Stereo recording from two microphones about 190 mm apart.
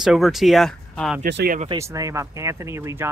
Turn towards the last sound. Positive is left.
turn(degrees=-15)  # may be behind; listen again after turning